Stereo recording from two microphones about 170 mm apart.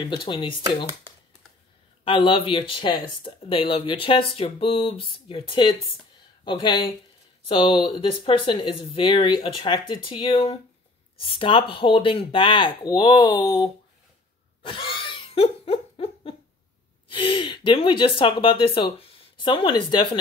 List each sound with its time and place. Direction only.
0.0 s speech: 30° left (ahead or behind)
2.0 s speech: 30° left (ahead or behind)
14.6 s laughter: 30° left (ahead or behind)
17.1 s speech: 30° left (ahead or behind)